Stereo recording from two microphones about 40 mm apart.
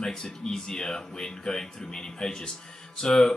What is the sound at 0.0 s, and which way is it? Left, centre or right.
Speech, centre.